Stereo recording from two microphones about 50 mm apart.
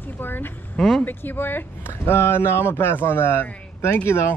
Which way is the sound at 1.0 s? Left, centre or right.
Left.